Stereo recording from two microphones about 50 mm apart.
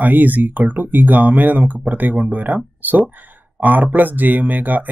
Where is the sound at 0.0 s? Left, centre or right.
Right.